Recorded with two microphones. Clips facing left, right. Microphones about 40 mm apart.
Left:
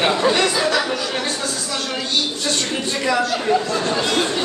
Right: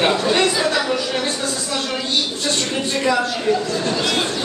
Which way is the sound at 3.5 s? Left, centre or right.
Centre.